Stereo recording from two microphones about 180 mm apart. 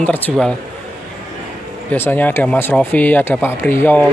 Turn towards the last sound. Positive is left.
turn(degrees=15)  # may be behind; listen again after turning